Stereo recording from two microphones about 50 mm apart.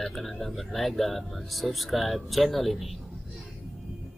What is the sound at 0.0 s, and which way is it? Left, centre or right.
Speech, centre.